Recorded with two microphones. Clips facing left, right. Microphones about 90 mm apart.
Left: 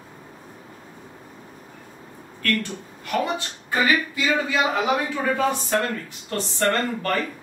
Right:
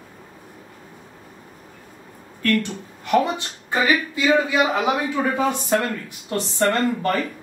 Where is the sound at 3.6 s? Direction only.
20° right (ahead or behind).